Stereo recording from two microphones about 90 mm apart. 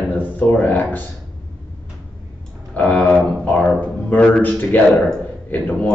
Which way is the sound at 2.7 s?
15° left (ahead or behind).